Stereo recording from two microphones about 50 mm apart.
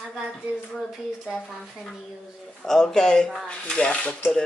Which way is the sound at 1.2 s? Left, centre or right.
Centre.